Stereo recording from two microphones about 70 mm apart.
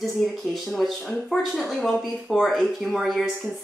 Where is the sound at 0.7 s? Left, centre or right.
Centre.